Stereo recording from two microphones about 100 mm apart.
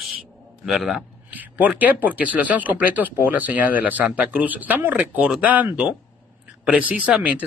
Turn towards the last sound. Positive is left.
turn(degrees=-15)  # may be behind; listen again after turning